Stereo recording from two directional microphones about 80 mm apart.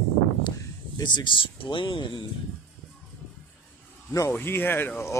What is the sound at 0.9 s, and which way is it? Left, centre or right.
Speech, left.